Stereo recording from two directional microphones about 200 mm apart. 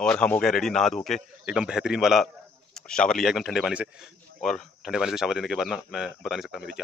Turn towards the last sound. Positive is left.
turn(degrees=0)  # may be behind; listen again after turning